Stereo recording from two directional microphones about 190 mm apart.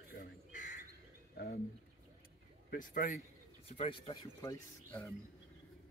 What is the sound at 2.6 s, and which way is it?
Speech, 45° left (ahead or behind).